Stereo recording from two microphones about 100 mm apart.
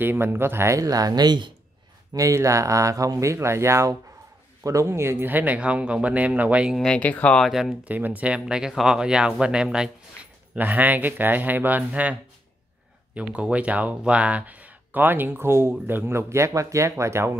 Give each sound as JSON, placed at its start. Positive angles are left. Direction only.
{"t": 0.0, "sound": "speech", "side_deg": -20}
{"t": 0.7, "sound": "speech", "side_deg": -35}
{"t": 2.1, "sound": "speech", "side_deg": -30}
{"t": 6.8, "sound": "speech", "side_deg": 10}
{"t": 7.4, "sound": "speech", "side_deg": 0}
{"t": 7.8, "sound": "speech", "side_deg": -15}